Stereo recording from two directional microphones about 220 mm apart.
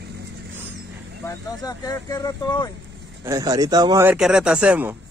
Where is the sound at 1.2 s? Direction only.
15° left (ahead or behind).